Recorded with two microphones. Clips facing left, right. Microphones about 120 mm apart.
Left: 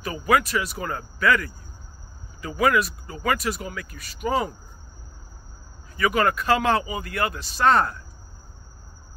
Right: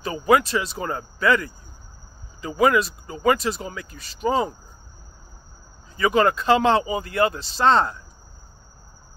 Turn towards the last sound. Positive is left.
turn(degrees=-25)  # may be behind; listen again after turning